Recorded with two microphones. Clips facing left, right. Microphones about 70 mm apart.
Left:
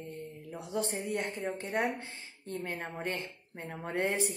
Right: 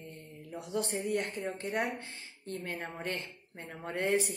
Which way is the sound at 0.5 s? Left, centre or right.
Left.